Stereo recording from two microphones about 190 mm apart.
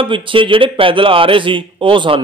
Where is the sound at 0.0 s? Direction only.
25° right (ahead or behind).